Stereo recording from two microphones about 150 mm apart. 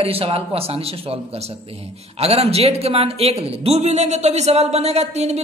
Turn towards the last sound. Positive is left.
turn(degrees=-45)  # may be behind; listen again after turning